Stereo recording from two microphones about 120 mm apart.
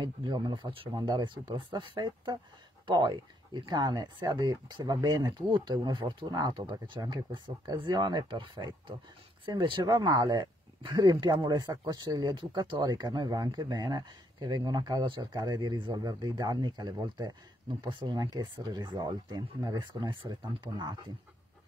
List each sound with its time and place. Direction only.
0.0 s speech: 40° right (ahead or behind)